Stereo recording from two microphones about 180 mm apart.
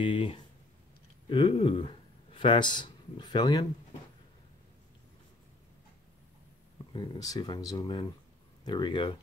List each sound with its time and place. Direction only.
0.0 s speech: 30° left (ahead or behind)
6.9 s speech: 20° left (ahead or behind)